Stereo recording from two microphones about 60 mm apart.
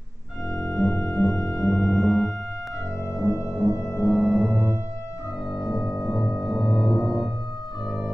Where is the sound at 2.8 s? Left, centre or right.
Left.